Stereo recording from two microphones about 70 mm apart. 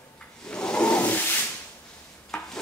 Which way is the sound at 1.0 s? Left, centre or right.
Left.